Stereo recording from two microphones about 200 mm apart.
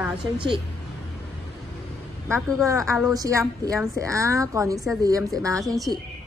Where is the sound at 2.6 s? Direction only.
15° right (ahead or behind).